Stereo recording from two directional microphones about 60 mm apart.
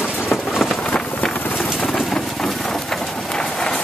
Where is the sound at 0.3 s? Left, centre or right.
Centre.